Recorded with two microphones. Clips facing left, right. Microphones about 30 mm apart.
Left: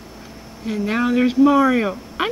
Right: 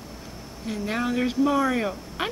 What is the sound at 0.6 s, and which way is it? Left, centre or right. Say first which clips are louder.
Speech: left 7 dB; centre.